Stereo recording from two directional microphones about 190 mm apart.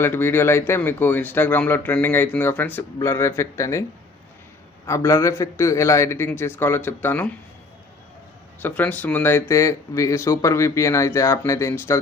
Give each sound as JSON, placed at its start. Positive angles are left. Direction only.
{"t": 0.0, "sound": "speech", "side_deg": 10}
{"t": 4.8, "sound": "speech", "side_deg": 15}
{"t": 8.6, "sound": "speech", "side_deg": 10}